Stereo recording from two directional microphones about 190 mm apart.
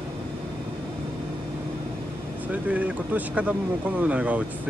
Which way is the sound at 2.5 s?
5° right (ahead or behind).